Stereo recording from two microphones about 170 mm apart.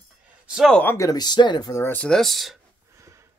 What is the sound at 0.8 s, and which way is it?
Speech, 15° left (ahead or behind).